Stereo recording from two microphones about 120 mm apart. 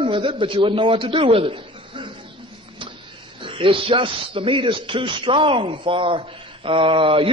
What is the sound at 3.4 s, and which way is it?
A man's voice, 45° right (ahead or behind).